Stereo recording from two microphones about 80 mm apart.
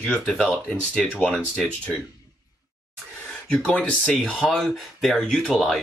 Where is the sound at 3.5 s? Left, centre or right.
Centre.